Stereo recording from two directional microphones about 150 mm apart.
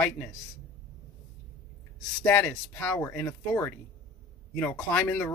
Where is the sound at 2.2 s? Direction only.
15° left (ahead or behind).